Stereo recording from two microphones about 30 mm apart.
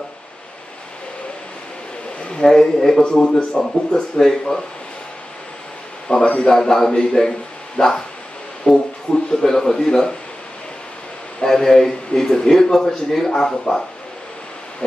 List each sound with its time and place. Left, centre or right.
2.3 s a man's voice: left
6.0 s a man's voice: left
6.5 s a man's voice: centre
7.8 s a man's voice: left
8.6 s speech: left
9.1 s a man's voice: left
11.4 s speech: centre